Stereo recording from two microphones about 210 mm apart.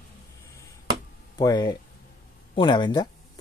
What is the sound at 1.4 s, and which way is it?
Speech, 20° left (ahead or behind).